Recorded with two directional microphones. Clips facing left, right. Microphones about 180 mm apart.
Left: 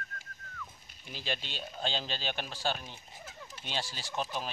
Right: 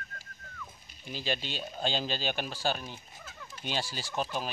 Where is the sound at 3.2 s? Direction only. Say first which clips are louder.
Even; 30° left (ahead or behind).